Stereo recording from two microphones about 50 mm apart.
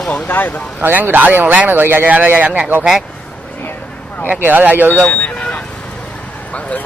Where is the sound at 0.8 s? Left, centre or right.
Right.